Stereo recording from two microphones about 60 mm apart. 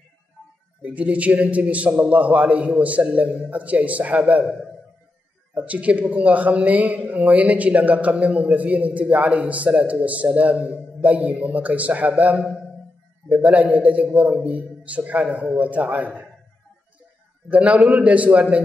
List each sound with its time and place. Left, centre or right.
0.9 s a man's voice: right
17.5 s a man's voice: right